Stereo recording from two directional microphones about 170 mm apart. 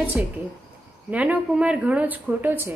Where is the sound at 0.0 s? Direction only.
10° right (ahead or behind).